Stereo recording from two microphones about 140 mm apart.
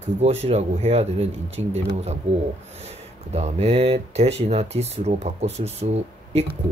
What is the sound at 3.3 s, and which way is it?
Speech, 50° right (ahead or behind).